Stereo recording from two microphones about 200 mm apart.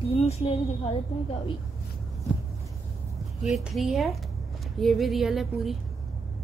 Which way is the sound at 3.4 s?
Centre (ahead or behind).